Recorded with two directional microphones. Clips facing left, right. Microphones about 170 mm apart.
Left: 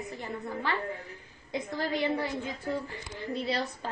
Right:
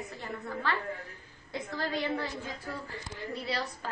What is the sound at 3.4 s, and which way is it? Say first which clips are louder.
Speech: left 3 dB; 25° left (ahead or behind).